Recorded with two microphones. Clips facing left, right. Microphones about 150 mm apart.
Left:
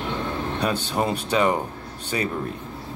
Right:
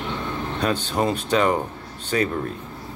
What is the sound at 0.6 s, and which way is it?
Speech, 10° left (ahead or behind).